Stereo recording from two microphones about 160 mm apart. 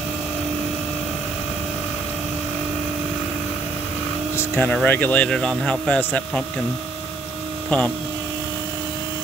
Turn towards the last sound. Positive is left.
turn(degrees=5)  # may be behind; listen again after turning